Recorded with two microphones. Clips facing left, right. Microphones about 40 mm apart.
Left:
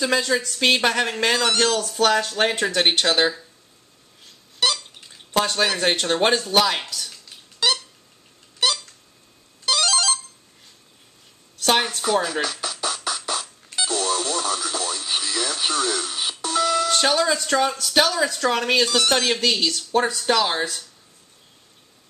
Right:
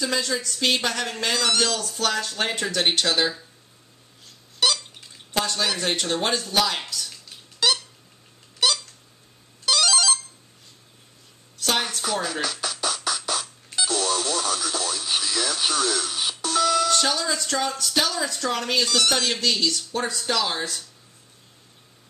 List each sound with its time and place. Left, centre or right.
0.0 s speech: left
1.3 s speech: centre
4.6 s a sound: centre
5.3 s speech: left
6.6 s speech: centre
7.6 s squeak: centre
9.7 s ringtone: centre
11.6 s speech: left
12.0 s music: centre
17.0 s speech: left
17.7 s speech: centre
18.9 s speech: centre
20.2 s speech: left
20.5 s speech: centre